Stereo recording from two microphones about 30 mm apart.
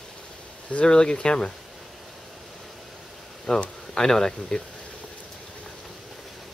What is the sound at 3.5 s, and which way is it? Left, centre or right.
Speech, left.